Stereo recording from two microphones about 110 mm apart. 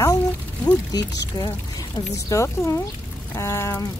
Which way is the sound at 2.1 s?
30° left (ahead or behind).